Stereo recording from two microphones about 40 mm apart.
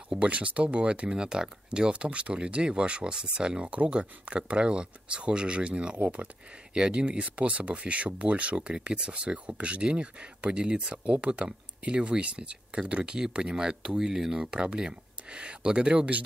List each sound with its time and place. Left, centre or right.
0.1 s speech: right
1.1 s speech: centre
14.4 s speech: right